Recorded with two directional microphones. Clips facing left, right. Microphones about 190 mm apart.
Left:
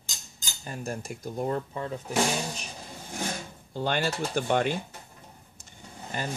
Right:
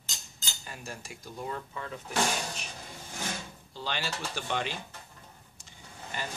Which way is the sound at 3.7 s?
50° left (ahead or behind).